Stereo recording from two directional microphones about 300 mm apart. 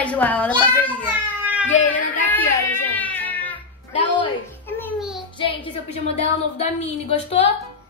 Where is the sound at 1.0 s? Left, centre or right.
Centre.